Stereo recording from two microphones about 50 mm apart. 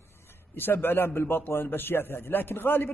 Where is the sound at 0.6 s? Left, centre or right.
Left.